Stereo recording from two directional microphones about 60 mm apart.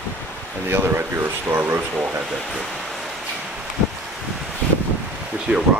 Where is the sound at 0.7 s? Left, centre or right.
Right.